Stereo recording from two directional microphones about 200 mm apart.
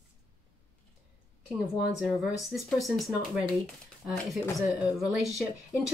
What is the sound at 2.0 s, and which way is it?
Speech, centre (ahead or behind).